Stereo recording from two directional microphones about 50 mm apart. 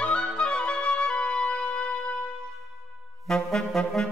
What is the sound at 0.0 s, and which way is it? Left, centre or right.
Music, left.